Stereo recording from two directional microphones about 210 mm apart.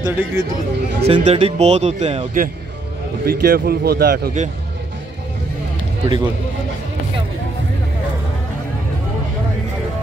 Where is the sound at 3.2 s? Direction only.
45° right (ahead or behind).